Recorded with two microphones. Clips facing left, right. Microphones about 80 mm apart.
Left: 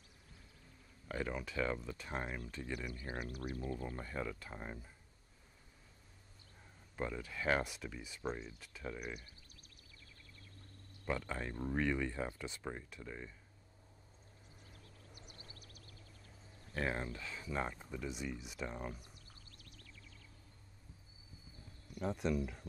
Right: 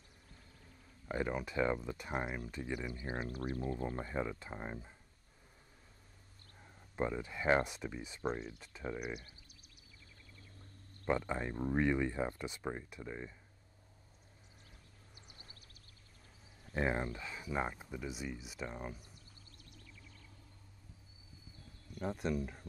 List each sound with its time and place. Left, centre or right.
1.0 s speech: right
7.0 s speech: right
8.3 s speech: centre
8.5 s speech: centre
11.1 s speech: right
15.1 s a sound: right
16.7 s speech: centre
19.7 s a sound: centre
22.0 s speech: centre